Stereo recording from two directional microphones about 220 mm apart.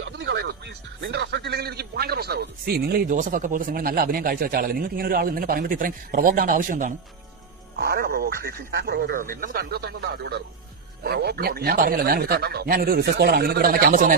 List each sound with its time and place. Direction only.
0.0 s speech: 55° right (ahead or behind)